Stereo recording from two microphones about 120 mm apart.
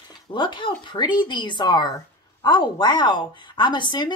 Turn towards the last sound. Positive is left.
turn(degrees=40)  # may be behind; listen again after turning